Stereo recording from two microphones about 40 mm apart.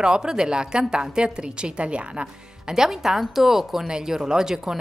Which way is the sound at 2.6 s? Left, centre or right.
Centre.